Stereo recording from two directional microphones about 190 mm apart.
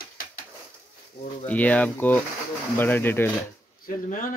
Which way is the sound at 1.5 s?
10° left (ahead or behind).